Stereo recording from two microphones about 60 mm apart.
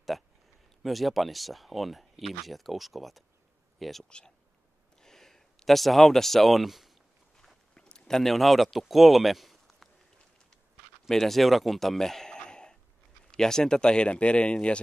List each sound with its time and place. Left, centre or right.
0.8 s speech: centre
7.3 s a sound: centre
11.1 s speech: centre